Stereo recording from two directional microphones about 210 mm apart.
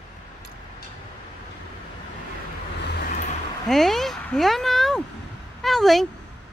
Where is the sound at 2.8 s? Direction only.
45° left (ahead or behind).